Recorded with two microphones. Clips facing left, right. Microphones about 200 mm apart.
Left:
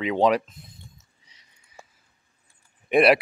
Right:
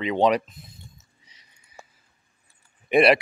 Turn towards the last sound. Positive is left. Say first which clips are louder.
# even
turn(degrees=0)  # may be behind; listen again after turning